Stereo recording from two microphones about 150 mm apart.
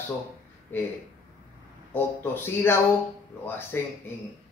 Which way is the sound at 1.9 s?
15° left (ahead or behind).